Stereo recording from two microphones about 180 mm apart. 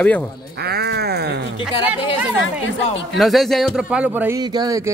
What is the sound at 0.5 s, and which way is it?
Speech, 60° right (ahead or behind).